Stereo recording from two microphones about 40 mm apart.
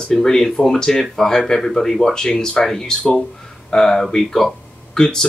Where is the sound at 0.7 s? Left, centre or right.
Centre.